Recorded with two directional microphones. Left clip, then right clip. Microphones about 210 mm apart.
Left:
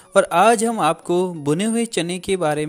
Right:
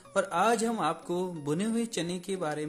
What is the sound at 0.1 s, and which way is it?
Speech, 35° left (ahead or behind).